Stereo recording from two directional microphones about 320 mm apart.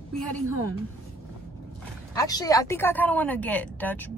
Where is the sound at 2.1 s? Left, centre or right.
Centre.